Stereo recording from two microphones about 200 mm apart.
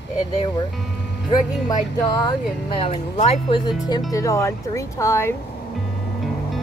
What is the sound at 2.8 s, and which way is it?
Speech, 30° left (ahead or behind).